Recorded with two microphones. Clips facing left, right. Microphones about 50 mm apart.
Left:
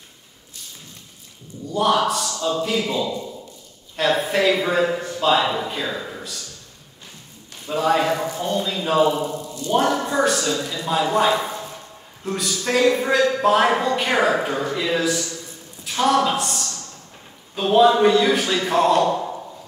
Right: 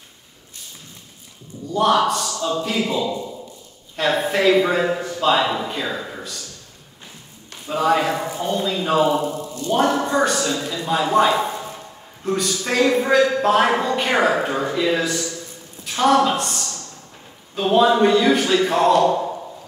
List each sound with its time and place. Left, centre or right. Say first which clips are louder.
1.7 s a man's voice: right 2 dB; centre
7.6 s a man's voice: right 1 dB; centre
9.1 s a sound: right 3 dB; right
10.0 s a man's voice: right 1 dB; centre
14.5 s a man's voice: right 1 dB; centre
14.8 s a man's voice: right 2 dB; centre